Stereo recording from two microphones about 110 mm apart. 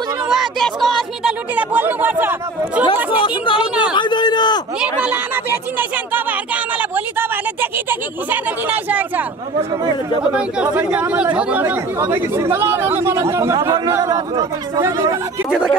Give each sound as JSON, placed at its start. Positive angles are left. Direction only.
{"t": 0.3, "sound": "speech", "side_deg": 0}
{"t": 1.5, "sound": "speech", "side_deg": -15}
{"t": 3.2, "sound": "a woman's voice", "side_deg": 50}
{"t": 3.9, "sound": "a sound", "side_deg": 45}
{"t": 4.7, "sound": "a sound", "side_deg": -10}
{"t": 10.3, "sound": "speech", "side_deg": -10}